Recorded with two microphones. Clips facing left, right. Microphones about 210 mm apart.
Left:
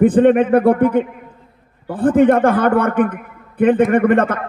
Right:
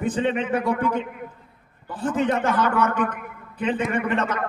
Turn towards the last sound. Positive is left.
turn(degrees=55)  # may be behind; listen again after turning